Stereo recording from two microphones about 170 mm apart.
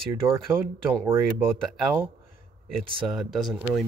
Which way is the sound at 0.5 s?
15° right (ahead or behind).